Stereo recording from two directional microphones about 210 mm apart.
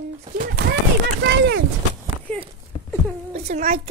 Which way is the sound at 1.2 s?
55° right (ahead or behind).